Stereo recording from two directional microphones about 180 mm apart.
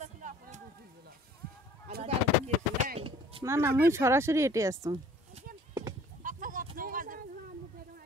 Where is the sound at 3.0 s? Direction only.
30° right (ahead or behind).